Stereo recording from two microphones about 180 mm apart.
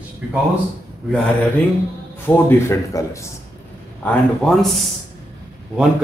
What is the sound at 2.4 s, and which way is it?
Speech, 15° left (ahead or behind).